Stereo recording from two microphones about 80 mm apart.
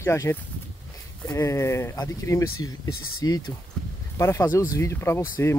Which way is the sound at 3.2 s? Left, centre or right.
Left.